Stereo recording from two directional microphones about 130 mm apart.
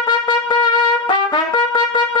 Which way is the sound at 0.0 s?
35° left (ahead or behind).